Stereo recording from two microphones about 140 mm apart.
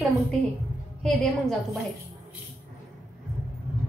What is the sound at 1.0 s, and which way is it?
Speech, 5° left (ahead or behind).